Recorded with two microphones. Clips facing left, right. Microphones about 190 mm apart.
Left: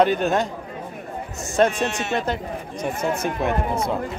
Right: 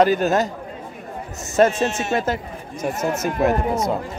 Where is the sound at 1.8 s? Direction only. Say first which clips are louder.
Right 2 dB; 5° right (ahead or behind).